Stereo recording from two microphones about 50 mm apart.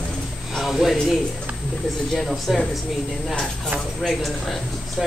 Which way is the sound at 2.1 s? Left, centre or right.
Centre.